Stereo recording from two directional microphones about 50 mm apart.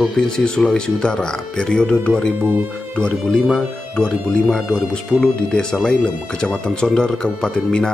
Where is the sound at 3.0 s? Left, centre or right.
Centre.